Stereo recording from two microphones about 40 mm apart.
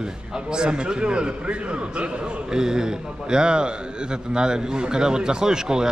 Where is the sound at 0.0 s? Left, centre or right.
Centre.